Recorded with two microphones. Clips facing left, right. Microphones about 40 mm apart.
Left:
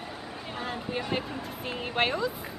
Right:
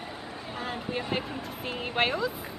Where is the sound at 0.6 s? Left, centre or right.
Centre.